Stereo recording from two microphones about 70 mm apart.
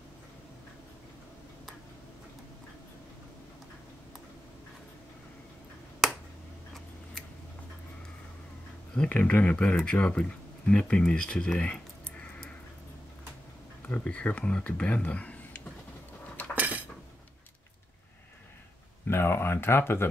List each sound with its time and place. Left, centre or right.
6.0 s finger snapping: centre
9.1 s speech: left
13.8 s speech: centre
16.5 s cutlery: right
19.0 s speech: left